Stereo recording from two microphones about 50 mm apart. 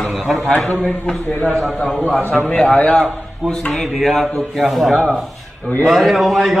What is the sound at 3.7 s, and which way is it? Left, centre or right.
A man's voice, centre.